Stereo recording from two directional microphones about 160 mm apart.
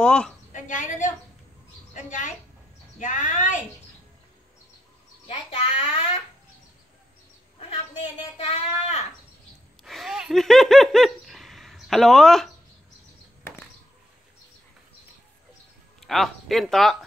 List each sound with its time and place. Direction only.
0.0 s a woman's voice: 5° left (ahead or behind)
0.5 s a woman's voice: 50° left (ahead or behind)
5.3 s speech: 40° left (ahead or behind)
8.4 s speech: 40° left (ahead or behind)
9.8 s laughter: centre (ahead or behind)
16.0 s speech: centre (ahead or behind)